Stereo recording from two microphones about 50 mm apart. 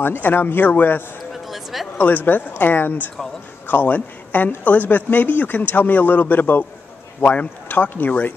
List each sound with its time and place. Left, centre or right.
0.0 s speech: left
1.3 s a sound: centre
2.0 s a woman's voice: left